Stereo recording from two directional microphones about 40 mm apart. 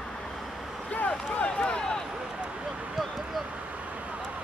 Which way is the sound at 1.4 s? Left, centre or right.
Left.